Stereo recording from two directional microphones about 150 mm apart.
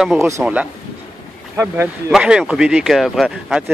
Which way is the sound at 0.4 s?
10° right (ahead or behind).